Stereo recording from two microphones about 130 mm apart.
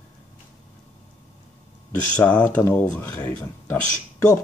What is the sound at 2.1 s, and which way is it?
Speech, 10° left (ahead or behind).